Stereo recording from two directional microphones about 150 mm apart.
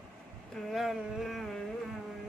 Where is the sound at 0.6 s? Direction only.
Centre (ahead or behind).